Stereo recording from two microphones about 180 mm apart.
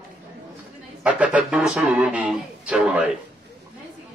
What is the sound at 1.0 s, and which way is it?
Speech, 5° right (ahead or behind).